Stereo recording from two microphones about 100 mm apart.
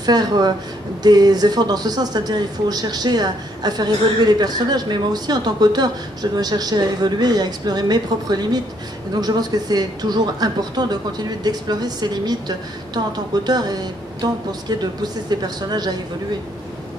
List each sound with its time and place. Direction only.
0.0 s speech: 45° right (ahead or behind)